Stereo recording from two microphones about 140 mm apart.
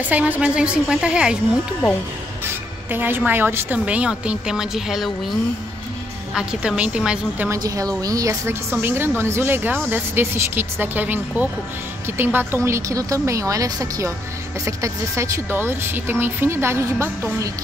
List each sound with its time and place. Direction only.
0.0 s speech: 10° right (ahead or behind)
2.9 s speech: 15° right (ahead or behind)
6.3 s speech: 5° right (ahead or behind)
7.4 s a woman's voice: 25° right (ahead or behind)